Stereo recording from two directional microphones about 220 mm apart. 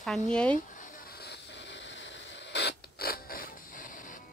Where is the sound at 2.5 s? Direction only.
50° left (ahead or behind).